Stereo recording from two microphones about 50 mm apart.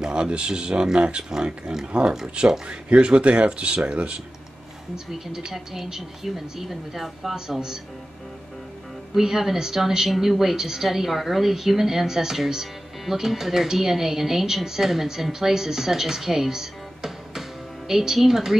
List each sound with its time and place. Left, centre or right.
0.0 s a woman's voice: centre
1.9 s speech: right
4.9 s a woman's voice: centre
9.1 s a woman's voice: centre